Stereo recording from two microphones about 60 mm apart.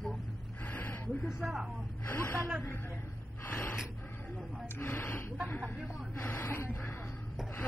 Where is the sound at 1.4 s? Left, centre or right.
Centre.